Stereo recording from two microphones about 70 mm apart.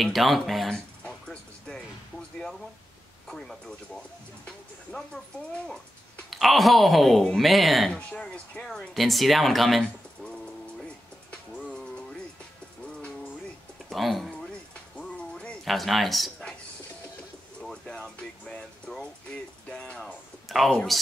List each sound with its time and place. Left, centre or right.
0.0 s speech: centre
0.7 s a sound: centre
3.3 s speech: centre
4.5 s music: centre
6.3 s speech: centre
7.9 s speech: centre
8.6 s speech: centre
11.2 s music: centre
13.8 s speech: centre
15.0 s music: centre
15.6 s speech: centre
17.6 s a sound: centre
19.3 s speech: centre
20.4 s speech: centre